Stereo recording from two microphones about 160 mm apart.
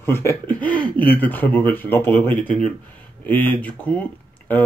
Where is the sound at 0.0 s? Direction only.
15° left (ahead or behind).